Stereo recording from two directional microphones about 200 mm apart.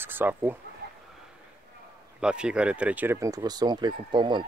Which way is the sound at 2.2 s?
5° right (ahead or behind).